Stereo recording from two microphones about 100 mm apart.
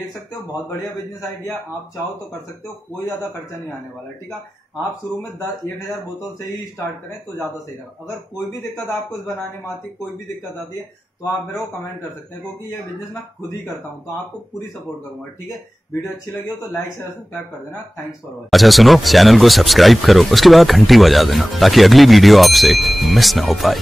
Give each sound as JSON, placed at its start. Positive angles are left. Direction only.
{"t": 6.4, "sound": "speech", "side_deg": 25}
{"t": 18.5, "sound": "speech", "side_deg": 0}